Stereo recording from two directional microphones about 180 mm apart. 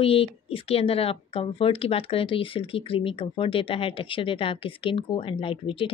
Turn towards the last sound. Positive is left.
turn(degrees=30)  # may be behind; listen again after turning